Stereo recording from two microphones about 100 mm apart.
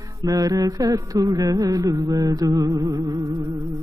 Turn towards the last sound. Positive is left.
turn(degrees=-40)  # may be behind; listen again after turning